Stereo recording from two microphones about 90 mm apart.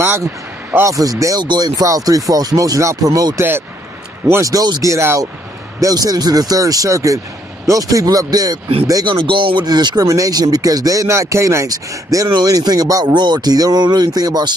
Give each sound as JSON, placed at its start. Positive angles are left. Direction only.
{"t": 0.0, "sound": "speech", "side_deg": -25}
{"t": 0.8, "sound": "speech", "side_deg": -40}
{"t": 1.4, "sound": "speech", "side_deg": -50}
{"t": 3.3, "sound": "speech", "side_deg": -25}
{"t": 4.3, "sound": "speech", "side_deg": -40}
{"t": 9.3, "sound": "a sound", "side_deg": -65}
{"t": 10.0, "sound": "speech", "side_deg": -40}